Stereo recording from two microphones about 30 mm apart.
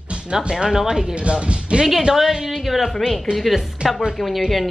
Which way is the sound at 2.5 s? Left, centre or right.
Centre.